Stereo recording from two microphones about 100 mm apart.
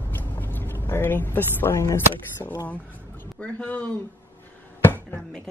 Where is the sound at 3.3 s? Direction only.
15° left (ahead or behind).